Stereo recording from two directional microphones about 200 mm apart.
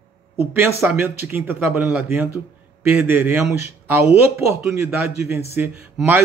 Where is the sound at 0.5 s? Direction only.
10° right (ahead or behind).